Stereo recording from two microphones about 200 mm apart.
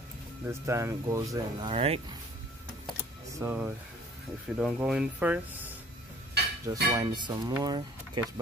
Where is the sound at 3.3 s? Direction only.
10° right (ahead or behind).